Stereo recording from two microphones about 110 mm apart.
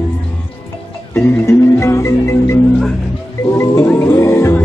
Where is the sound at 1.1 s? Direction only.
25° left (ahead or behind).